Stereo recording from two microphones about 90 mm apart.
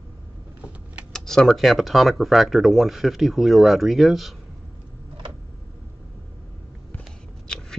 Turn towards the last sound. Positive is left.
turn(degrees=10)  # may be behind; listen again after turning